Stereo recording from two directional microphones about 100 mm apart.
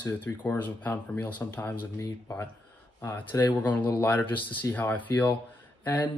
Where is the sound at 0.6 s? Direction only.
15° left (ahead or behind).